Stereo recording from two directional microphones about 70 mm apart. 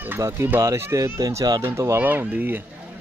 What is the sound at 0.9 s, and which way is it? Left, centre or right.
Speech, right.